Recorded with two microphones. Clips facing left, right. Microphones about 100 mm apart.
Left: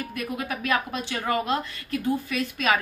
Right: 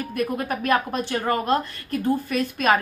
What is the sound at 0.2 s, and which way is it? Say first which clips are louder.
A woman's voice: right 6 dB; 45° right (ahead or behind).